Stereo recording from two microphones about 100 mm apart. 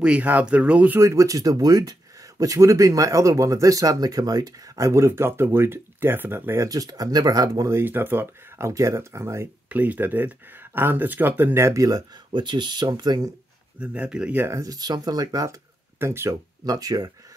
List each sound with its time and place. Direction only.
0.0 s speech: 15° right (ahead or behind)
0.9 s speech: 30° right (ahead or behind)
6.7 s speech: 35° right (ahead or behind)
9.7 s speech: 15° right (ahead or behind); by 12.0 s 35° right (ahead or behind)
12.3 s speech: 50° right (ahead or behind)
13.7 s speech: 10° right (ahead or behind)
14.5 s speech: 35° right (ahead or behind)
16.0 s speech: 25° right (ahead or behind)
16.6 s speech: 40° right (ahead or behind)